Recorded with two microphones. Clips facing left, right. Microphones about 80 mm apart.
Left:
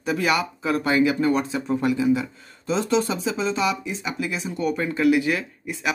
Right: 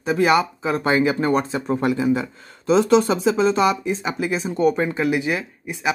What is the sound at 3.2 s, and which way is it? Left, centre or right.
Speech, right.